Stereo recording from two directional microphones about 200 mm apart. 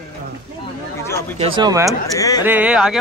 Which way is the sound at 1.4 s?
25° right (ahead or behind).